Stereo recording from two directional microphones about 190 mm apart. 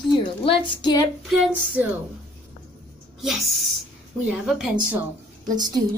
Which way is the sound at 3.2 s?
Centre (ahead or behind).